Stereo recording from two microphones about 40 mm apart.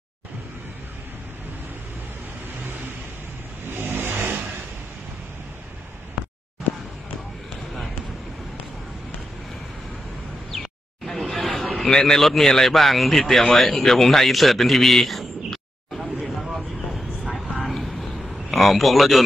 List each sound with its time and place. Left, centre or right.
3.6 s vehicle: right
11.1 s chatter: centre
11.9 s a man's voice: centre
17.3 s a sound: centre